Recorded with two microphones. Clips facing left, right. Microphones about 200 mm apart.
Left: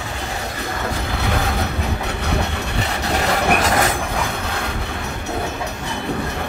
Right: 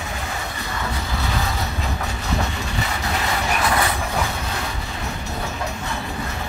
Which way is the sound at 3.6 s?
45° left (ahead or behind).